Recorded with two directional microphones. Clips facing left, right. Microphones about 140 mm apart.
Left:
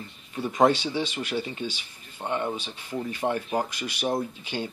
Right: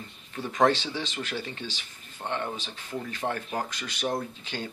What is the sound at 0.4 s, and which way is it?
Speech, 10° left (ahead or behind).